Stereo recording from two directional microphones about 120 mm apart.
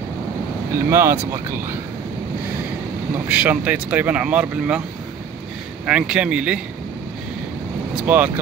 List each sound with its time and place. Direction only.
0.7 s speech: 20° right (ahead or behind)
3.3 s speech: 15° right (ahead or behind)
5.9 s speech: 10° right (ahead or behind)
7.9 s speech: 10° right (ahead or behind)